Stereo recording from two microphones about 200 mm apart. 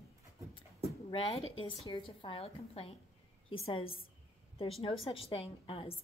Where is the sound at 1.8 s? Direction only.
25° left (ahead or behind).